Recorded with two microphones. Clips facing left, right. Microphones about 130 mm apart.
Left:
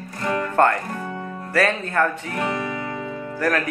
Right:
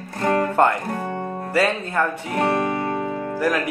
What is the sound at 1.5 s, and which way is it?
Speech, 15° right (ahead or behind).